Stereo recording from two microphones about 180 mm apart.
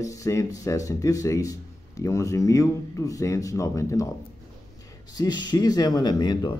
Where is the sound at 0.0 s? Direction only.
20° left (ahead or behind).